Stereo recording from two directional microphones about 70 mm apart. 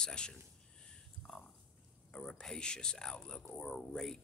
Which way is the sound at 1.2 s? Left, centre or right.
Centre.